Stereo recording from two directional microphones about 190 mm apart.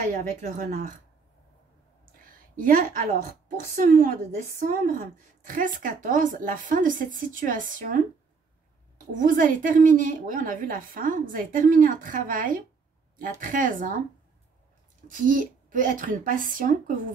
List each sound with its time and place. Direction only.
0.0 s a woman's voice: 45° right (ahead or behind)
2.3 s a woman's voice: 45° right (ahead or behind)
9.2 s a woman's voice: 45° right (ahead or behind)
15.0 s a woman's voice: 45° right (ahead or behind)